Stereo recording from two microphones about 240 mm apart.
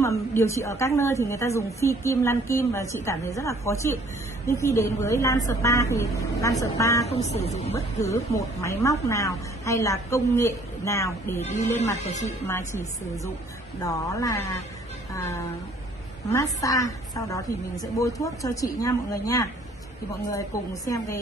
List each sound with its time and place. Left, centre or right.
0.0 s a woman's voice: centre
7.1 s speech: left
7.7 s a woman's voice: centre
12.0 s speech: left
12.4 s a woman's voice: centre